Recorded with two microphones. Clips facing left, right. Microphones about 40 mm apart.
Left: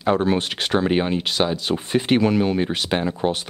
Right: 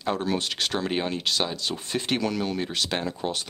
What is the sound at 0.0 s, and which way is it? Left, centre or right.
Speech, left.